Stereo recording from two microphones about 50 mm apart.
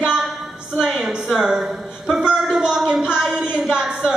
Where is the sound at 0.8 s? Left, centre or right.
Centre.